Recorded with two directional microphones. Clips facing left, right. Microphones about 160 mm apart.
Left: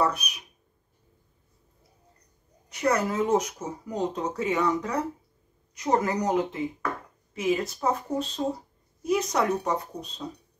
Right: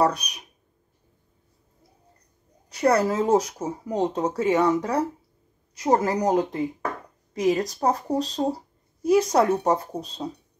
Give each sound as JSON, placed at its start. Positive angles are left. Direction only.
{"t": 0.0, "sound": "speech", "side_deg": -35}
{"t": 2.7, "sound": "speech", "side_deg": -35}